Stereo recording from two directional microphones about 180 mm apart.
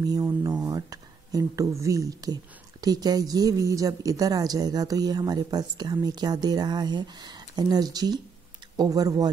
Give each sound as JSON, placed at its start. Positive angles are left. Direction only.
{"t": 0.0, "sound": "speech", "side_deg": -20}